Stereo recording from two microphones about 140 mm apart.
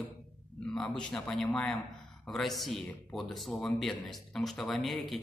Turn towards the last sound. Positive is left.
turn(degrees=0)  # may be behind; listen again after turning